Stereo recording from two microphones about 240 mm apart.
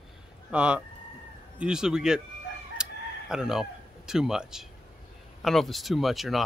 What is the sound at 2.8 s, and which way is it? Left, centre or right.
Crowing, centre.